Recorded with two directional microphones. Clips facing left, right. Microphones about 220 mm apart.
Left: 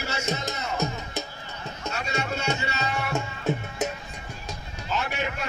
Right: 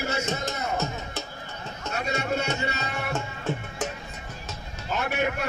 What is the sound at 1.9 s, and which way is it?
Music, 55° right (ahead or behind).